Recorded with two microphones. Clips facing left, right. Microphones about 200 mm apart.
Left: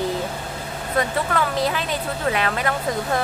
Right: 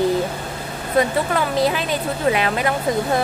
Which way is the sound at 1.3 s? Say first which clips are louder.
Right 3 dB; 15° right (ahead or behind).